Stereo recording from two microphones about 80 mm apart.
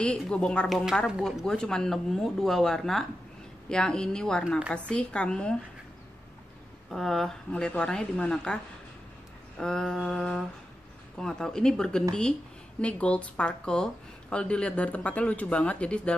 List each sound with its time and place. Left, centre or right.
0.0 s speech: centre
4.5 s a woman's voice: centre
4.7 s speech: centre
6.9 s speech: centre
9.6 s speech: centre